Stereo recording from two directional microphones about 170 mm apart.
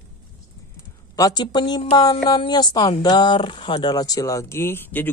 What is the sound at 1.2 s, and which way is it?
A woman's voice, 25° left (ahead or behind).